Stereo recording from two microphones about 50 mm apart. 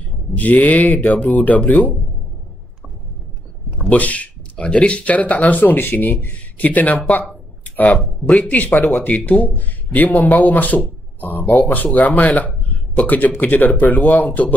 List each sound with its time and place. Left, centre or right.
0.4 s speech: left
3.8 s speech: left